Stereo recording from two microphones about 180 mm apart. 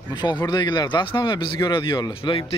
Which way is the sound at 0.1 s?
25° left (ahead or behind).